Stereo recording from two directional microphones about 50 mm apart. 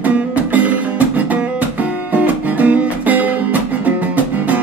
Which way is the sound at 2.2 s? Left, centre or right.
Right.